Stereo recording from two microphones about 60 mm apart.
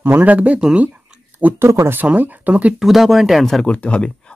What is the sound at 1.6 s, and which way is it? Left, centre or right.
Speech, right.